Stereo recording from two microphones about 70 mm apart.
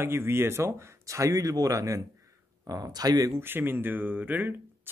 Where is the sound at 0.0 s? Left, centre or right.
Right.